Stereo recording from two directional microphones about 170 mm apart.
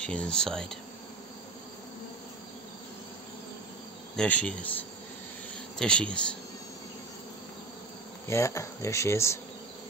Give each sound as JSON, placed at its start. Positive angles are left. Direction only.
{"t": 0.0, "sound": "speech", "side_deg": 5}
{"t": 4.2, "sound": "speech", "side_deg": 5}
{"t": 5.8, "sound": "speech", "side_deg": 5}
{"t": 8.3, "sound": "speech", "side_deg": 15}